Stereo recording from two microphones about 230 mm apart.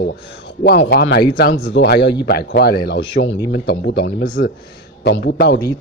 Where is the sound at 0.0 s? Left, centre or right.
Left.